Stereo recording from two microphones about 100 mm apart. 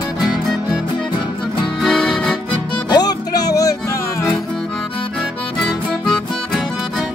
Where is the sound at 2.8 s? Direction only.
40° left (ahead or behind).